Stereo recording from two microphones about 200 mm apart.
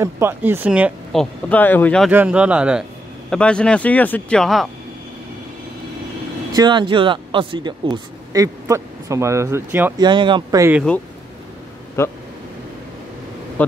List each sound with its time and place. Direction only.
0.0 s speech: 10° right (ahead or behind); by 2.0 s 5° left (ahead or behind)
2.0 s speech: 5° right (ahead or behind)
3.3 s speech: 5° left (ahead or behind)
6.5 s speech: 20° right (ahead or behind)
10.0 s speech: 25° right (ahead or behind)
12.0 s speech: 15° left (ahead or behind)
13.6 s speech: 10° left (ahead or behind)